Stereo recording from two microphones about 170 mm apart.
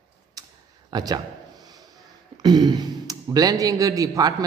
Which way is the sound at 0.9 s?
25° right (ahead or behind).